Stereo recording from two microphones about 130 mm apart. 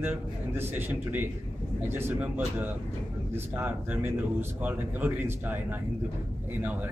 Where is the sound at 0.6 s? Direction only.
15° right (ahead or behind).